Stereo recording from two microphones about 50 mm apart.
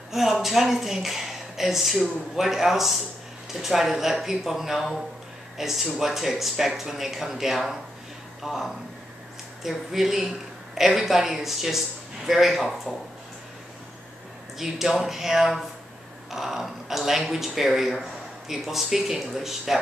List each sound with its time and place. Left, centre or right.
0.1 s a woman's voice: centre
14.6 s a woman's voice: centre